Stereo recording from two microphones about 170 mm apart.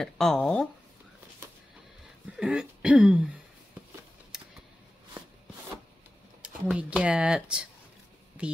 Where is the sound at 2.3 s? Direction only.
5° right (ahead or behind).